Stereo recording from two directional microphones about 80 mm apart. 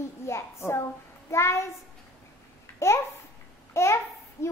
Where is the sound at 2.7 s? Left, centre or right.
Left.